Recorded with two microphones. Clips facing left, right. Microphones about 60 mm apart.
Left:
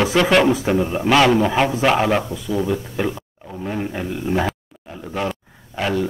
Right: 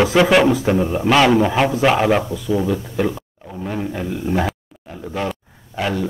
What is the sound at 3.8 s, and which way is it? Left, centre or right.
Speech, left.